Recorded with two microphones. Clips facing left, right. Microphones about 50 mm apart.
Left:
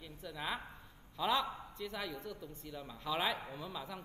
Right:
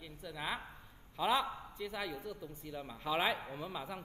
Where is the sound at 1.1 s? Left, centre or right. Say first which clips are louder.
Right 1 dB; centre.